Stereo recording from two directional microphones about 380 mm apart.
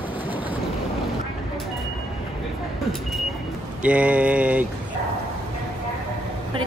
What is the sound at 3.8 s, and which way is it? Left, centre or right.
Mantra, centre.